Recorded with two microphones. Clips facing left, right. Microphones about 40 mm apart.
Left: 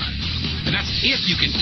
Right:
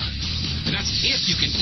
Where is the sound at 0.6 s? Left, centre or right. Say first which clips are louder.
Left 3 dB; left.